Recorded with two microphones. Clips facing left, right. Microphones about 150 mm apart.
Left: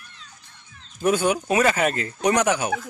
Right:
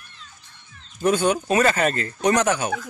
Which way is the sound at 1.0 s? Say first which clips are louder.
Right 1 dB; 10° left (ahead or behind).